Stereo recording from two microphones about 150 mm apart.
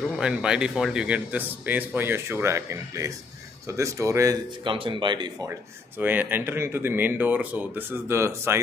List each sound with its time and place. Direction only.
0.2 s speech: 5° right (ahead or behind)
4.6 s speech: 35° right (ahead or behind)
5.5 s speech: 15° right (ahead or behind)